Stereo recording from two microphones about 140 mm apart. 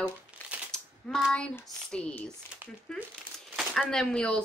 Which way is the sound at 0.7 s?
5° left (ahead or behind).